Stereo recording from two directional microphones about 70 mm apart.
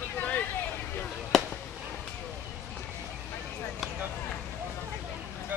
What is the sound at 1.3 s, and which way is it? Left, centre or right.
Fireworks, centre.